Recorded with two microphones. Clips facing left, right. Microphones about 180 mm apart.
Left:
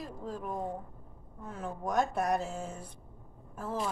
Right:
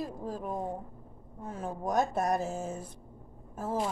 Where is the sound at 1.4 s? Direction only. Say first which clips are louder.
Right 2 dB; 45° right (ahead or behind).